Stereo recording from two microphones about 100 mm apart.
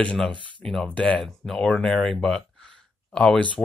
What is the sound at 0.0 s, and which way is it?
Speech, 10° left (ahead or behind).